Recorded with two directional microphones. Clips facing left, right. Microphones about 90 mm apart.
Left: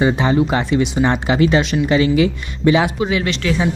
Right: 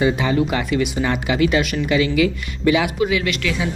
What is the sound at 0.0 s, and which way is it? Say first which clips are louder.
Speech: left 3 dB; 30° left (ahead or behind).